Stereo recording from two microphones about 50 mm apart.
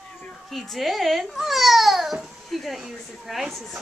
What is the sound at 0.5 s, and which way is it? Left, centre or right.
A child's voice, centre.